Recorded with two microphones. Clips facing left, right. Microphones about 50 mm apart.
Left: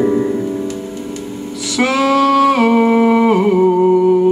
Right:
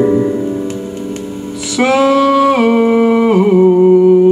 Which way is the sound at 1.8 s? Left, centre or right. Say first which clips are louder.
Right 3 dB; right.